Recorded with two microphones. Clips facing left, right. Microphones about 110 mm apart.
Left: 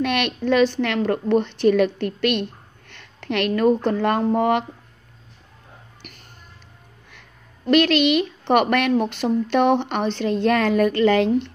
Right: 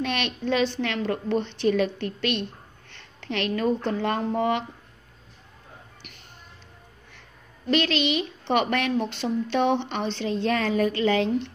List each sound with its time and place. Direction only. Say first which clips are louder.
0.0 s a woman's voice: left 5 dB; 60° left (ahead or behind)
7.1 s a woman's voice: left 2 dB; 65° left (ahead or behind)